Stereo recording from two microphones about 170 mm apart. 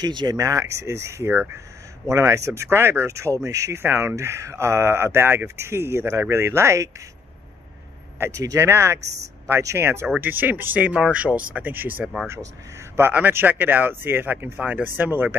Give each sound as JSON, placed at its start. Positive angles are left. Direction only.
{"t": 0.0, "sound": "speech", "side_deg": -25}
{"t": 8.2, "sound": "speech", "side_deg": -20}